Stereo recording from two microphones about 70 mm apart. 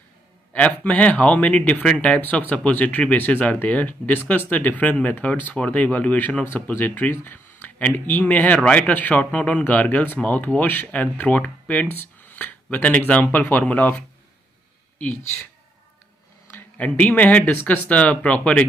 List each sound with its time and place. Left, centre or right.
0.5 s speech: centre
16.5 s speech: left